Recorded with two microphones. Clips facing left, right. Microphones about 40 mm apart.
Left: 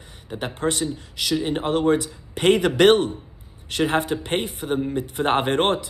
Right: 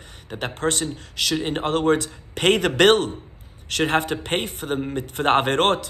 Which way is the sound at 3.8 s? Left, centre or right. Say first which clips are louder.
Even; right.